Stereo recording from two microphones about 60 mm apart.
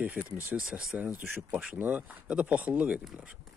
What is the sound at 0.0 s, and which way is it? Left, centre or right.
Speech, right.